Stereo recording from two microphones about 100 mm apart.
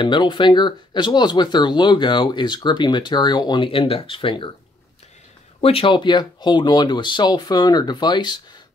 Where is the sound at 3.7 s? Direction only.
65° left (ahead or behind).